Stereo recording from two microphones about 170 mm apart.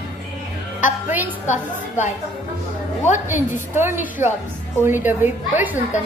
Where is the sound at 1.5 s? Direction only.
45° left (ahead or behind).